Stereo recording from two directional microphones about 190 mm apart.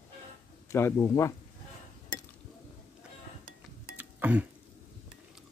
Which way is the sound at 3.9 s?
10° right (ahead or behind).